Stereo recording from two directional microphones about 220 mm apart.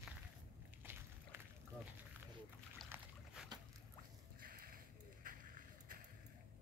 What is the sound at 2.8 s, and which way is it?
Boat, centre (ahead or behind).